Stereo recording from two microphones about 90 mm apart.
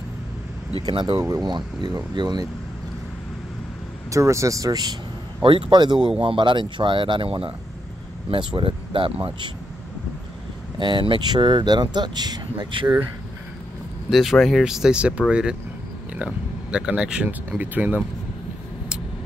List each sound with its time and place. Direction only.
0.8 s speech: 50° right (ahead or behind)
4.1 s speech: 35° right (ahead or behind)
5.4 s speech: 70° right (ahead or behind)
8.3 s speech: 65° right (ahead or behind); by 9.5 s 80° right
10.8 s speech: 60° right (ahead or behind)
14.1 s speech: centre (ahead or behind); by 18.0 s 20° right (ahead or behind)